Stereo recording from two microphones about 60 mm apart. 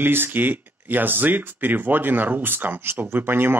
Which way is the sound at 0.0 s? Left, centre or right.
Right.